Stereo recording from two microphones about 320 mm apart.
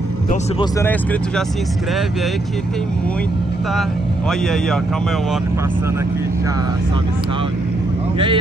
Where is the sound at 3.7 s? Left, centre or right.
Centre.